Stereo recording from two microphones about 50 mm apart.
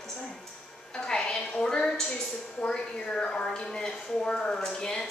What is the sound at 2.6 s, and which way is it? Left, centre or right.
A woman's voice, centre.